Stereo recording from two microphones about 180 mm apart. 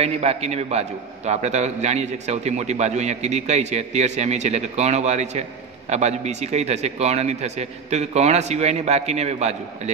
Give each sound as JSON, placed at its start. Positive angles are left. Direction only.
{"t": 0.0, "sound": "a man's voice", "side_deg": -35}